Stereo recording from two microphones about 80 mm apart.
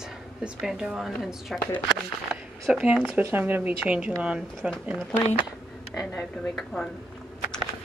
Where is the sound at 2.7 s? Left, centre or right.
Centre.